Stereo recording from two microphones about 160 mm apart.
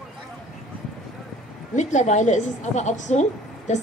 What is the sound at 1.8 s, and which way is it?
A woman's voice, 50° left (ahead or behind).